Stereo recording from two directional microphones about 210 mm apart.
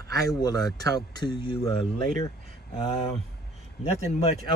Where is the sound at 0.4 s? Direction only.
20° left (ahead or behind).